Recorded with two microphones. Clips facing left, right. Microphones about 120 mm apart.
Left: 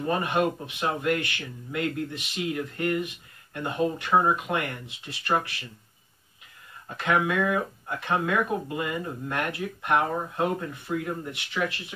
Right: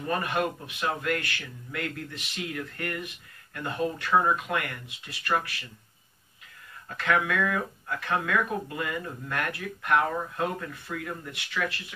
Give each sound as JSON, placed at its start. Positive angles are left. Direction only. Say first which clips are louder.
{"t": 0.0, "sound": "speech", "louder": "left 3 dB", "side_deg": 25}
{"t": 6.9, "sound": "speech", "louder": "left 2 dB", "side_deg": 20}